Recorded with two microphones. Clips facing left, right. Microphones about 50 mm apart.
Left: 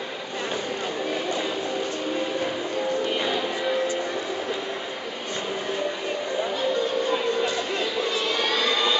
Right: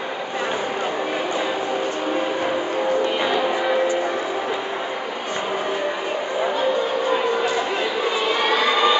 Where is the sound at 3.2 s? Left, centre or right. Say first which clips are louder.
Right 5 dB; centre.